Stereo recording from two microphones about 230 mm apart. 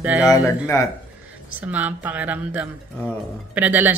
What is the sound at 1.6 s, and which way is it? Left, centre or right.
Speech, centre.